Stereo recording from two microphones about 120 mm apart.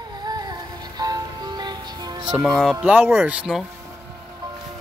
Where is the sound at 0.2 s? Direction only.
35° right (ahead or behind).